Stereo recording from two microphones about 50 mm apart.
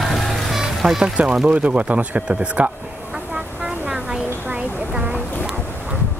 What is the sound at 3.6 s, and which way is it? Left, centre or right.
Vehicle, right.